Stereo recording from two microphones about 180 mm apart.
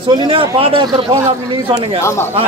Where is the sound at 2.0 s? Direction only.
15° left (ahead or behind).